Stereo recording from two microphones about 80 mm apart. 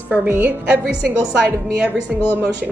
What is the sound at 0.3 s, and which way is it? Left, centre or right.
A woman's voice, centre.